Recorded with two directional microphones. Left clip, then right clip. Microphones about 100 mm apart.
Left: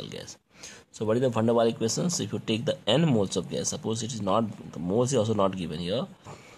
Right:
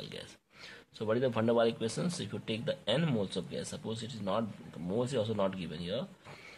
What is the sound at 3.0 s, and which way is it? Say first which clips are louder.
Speech: left 8 dB; 60° left (ahead or behind).